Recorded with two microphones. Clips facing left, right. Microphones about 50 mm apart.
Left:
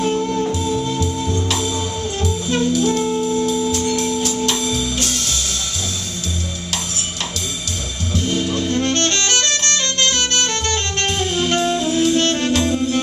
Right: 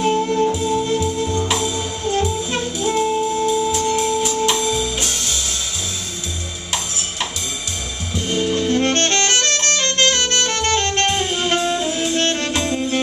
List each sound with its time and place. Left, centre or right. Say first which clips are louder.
0.0 s music: right 2 dB; centre
0.5 s music: right 2 dB; centre
1.3 s music: right 1 dB; centre
8.1 s music: even; centre
8.8 s saxophone: right 1 dB; right
11.1 s music: even; centre
11.7 s saxophone: left 3 dB; centre